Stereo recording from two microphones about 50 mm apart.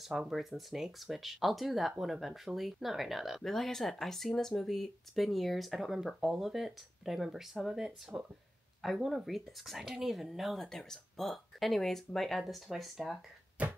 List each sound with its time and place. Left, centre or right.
0.3 s speech: centre
10.7 s speech: centre
13.6 s a sound: right